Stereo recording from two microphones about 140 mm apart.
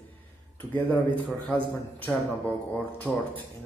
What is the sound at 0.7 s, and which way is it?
A man's voice, 10° left (ahead or behind).